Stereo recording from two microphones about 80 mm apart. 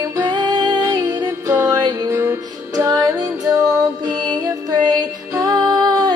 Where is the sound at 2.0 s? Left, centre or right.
Right.